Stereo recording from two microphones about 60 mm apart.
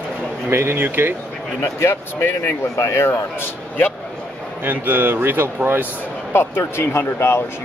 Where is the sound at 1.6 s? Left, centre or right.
Left.